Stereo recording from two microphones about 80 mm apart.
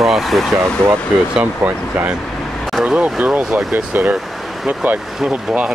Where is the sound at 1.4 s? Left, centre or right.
Centre.